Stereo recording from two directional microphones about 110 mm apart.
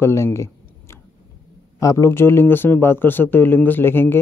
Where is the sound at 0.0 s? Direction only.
25° left (ahead or behind).